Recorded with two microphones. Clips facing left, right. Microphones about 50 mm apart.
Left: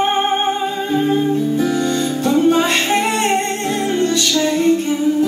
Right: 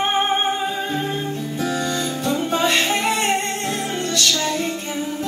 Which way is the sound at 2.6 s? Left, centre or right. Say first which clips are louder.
Left 3 dB; left.